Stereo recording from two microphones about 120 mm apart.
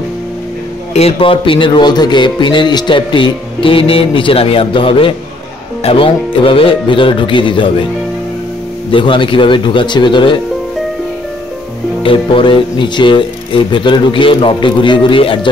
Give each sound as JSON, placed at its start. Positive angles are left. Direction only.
{"t": 0.9, "sound": "a man's voice", "side_deg": 55}
{"t": 8.9, "sound": "a man's voice", "side_deg": 45}
{"t": 12.0, "sound": "a man's voice", "side_deg": 50}